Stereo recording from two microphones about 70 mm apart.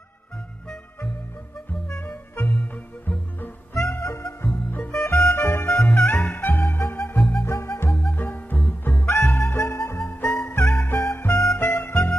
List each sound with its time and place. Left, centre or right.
1.7 s music: left
7.2 s music: centre
7.4 s music: left
8.1 s music: left
9.5 s music: left